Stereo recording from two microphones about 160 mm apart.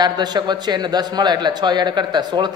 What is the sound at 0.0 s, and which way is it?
A man's voice, 25° right (ahead or behind).